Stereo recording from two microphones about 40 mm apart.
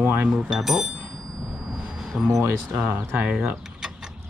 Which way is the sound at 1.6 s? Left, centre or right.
Centre.